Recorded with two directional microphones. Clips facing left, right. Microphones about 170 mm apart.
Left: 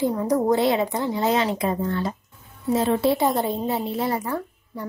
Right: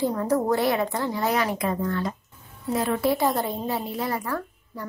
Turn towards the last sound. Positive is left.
turn(degrees=20)  # may be behind; listen again after turning